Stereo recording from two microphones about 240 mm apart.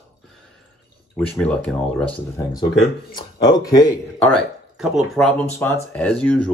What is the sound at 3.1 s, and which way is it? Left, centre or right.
Speech, centre.